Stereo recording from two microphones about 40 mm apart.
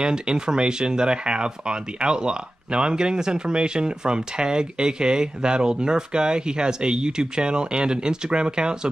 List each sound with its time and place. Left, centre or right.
0.0 s speech: right